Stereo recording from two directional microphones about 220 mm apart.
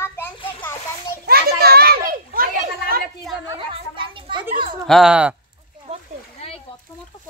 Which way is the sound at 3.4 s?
25° right (ahead or behind).